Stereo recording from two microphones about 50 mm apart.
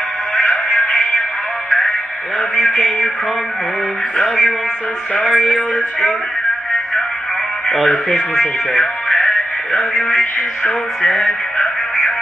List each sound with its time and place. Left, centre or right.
0.4 s music: centre
2.7 s a sound: centre
4.2 s speech: left
8.7 s music: left
9.7 s speech: left
10.6 s music: left